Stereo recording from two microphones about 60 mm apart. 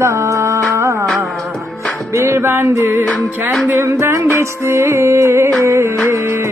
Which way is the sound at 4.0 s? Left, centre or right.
Right.